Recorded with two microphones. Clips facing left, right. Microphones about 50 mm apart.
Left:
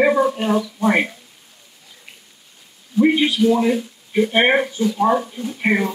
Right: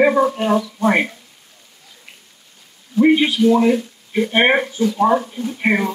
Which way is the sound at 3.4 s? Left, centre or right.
Centre.